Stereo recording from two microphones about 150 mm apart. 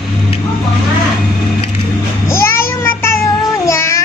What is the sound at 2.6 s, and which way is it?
Child singing, 15° left (ahead or behind).